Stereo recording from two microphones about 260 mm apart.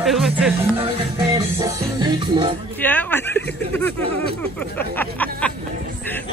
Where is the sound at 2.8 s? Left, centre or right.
Centre.